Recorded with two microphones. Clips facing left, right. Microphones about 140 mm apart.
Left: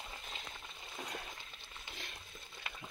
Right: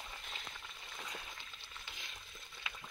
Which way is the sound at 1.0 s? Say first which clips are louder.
Left 4 dB; 40° left (ahead or behind).